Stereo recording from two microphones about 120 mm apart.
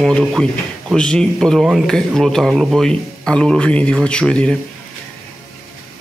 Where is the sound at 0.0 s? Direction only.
5° left (ahead or behind).